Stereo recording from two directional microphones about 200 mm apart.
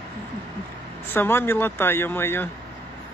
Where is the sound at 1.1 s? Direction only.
10° left (ahead or behind).